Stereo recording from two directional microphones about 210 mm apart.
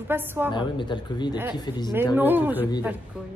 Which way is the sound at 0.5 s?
20° left (ahead or behind).